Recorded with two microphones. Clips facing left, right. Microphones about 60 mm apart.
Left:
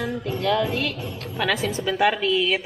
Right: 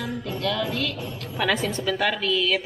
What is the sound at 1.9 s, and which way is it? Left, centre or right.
Speech, centre.